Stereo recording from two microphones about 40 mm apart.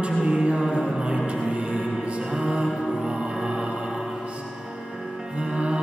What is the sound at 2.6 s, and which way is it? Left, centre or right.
Music, centre.